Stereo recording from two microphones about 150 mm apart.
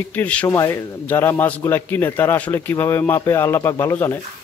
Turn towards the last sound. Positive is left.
turn(degrees=15)  # may be behind; listen again after turning